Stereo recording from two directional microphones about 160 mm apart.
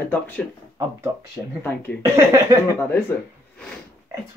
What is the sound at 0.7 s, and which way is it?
Speech, 20° right (ahead or behind).